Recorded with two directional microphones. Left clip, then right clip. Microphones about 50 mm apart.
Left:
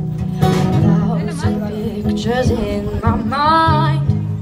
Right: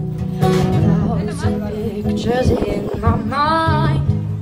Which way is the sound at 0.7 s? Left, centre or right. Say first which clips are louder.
Left 1 dB; right.